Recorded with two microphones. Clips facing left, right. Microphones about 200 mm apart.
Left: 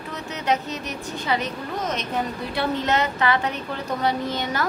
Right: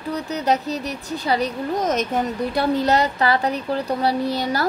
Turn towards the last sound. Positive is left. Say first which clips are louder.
# right 4 dB
turn(degrees=-35)  # may be behind; listen again after turning